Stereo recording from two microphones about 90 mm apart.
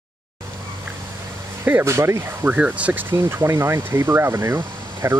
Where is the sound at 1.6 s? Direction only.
25° right (ahead or behind).